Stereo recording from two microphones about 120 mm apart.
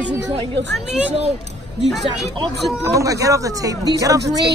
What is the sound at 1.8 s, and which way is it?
Speech, centre (ahead or behind).